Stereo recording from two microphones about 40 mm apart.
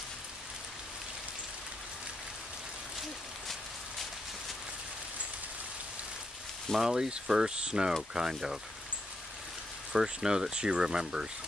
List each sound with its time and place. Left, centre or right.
6.8 s speech: centre
9.9 s speech: centre